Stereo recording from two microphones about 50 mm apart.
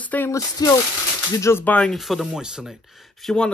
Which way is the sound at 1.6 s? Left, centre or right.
Left.